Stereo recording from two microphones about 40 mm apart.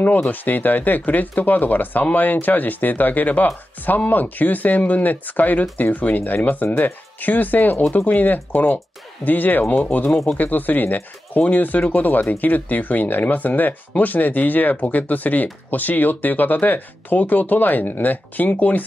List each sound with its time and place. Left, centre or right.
0.3 s speech: left